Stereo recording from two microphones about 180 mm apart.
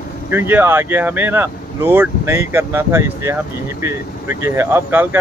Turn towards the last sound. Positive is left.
turn(degrees=-10)  # may be behind; listen again after turning